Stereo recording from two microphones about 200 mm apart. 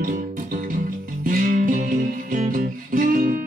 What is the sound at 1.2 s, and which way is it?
Music, 40° right (ahead or behind).